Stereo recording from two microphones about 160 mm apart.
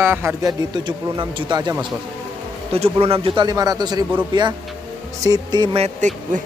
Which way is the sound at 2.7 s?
35° right (ahead or behind).